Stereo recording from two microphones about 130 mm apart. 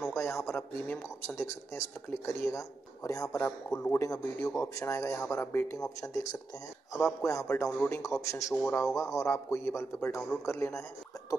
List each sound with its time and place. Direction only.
0.0 s speech: 20° left (ahead or behind)
7.2 s speech: 20° left (ahead or behind)